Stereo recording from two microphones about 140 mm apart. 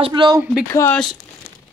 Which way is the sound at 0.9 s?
Centre (ahead or behind).